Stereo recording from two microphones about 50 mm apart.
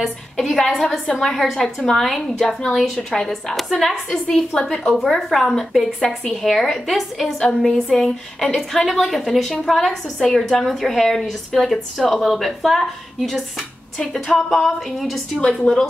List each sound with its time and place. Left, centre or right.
0.0 s a woman's voice: centre
7.3 s a woman's voice: centre
15.7 s speech: left